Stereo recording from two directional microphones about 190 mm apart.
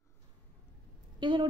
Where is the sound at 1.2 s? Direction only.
25° right (ahead or behind).